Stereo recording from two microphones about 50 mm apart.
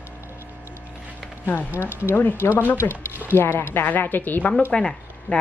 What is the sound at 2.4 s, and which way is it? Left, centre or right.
Speech, left.